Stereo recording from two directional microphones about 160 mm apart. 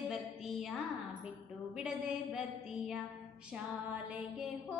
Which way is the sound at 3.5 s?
10° right (ahead or behind).